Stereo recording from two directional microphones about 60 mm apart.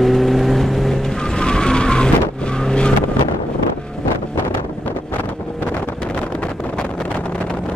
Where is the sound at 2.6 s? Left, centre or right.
Centre.